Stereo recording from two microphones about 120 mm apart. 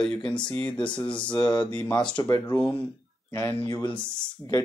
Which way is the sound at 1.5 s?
35° left (ahead or behind).